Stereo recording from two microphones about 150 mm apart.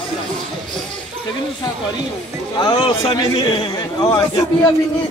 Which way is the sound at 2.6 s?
35° left (ahead or behind).